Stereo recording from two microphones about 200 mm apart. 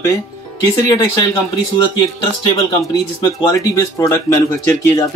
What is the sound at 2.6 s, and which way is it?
Speech, 20° left (ahead or behind).